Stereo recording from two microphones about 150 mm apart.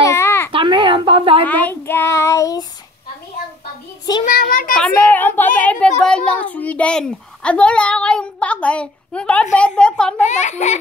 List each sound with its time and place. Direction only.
0.0 s a sound: 20° left (ahead or behind)
0.5 s a sound: 35° right (ahead or behind)
1.4 s child singing: 10° left (ahead or behind)
4.3 s a child's voice: 65° left (ahead or behind)
4.7 s a child's voice: 10° left (ahead or behind)
10.2 s a child's voice: 50° left (ahead or behind)